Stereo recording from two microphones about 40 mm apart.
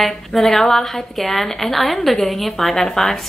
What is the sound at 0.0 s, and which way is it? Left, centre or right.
A woman's voice, centre.